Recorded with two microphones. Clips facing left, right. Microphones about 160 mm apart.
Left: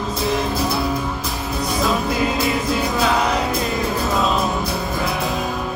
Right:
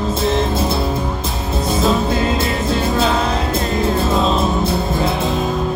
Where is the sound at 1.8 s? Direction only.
25° right (ahead or behind).